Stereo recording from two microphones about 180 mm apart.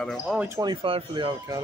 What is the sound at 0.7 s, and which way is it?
Speech, 30° right (ahead or behind).